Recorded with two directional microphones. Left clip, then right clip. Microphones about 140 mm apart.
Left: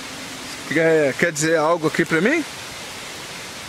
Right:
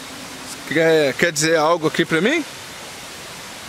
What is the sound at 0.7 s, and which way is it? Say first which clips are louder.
Speech: right 1 dB; 35° right (ahead or behind).